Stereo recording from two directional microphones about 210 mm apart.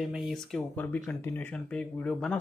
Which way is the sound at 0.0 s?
Centre (ahead or behind).